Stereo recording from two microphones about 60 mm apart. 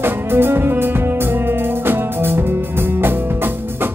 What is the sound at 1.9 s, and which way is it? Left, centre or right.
Music, right.